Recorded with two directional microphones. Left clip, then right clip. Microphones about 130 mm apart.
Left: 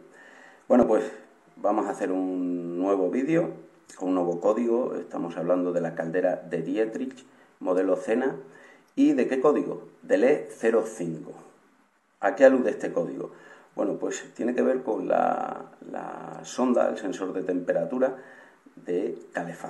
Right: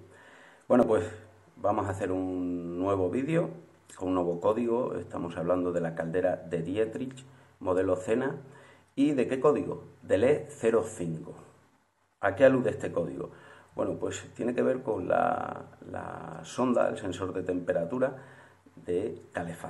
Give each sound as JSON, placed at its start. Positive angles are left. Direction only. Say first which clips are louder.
{"t": 0.7, "sound": "a man's voice", "louder": "left 3 dB", "side_deg": -5}
{"t": 1.6, "sound": "speech", "louder": "left 3 dB", "side_deg": -15}
{"t": 12.2, "sound": "speech", "louder": "left 4 dB", "side_deg": -5}